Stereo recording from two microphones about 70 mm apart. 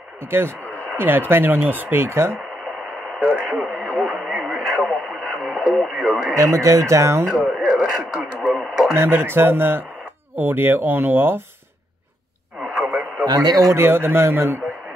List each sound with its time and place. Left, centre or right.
0.3 s speech: right
3.2 s radio: centre
3.4 s radio: right
4.5 s radio: centre
6.3 s speech: right
8.0 s radio: centre
8.5 s radio: centre
8.9 s speech: right
12.7 s radio: centre
13.2 s a man's voice: right
13.7 s speech: right